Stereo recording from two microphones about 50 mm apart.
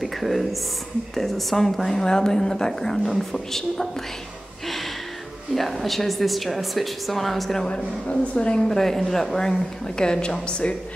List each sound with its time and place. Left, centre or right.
0.0 s a woman's voice: centre
5.5 s a woman's voice: centre
7.6 s a woman's voice: centre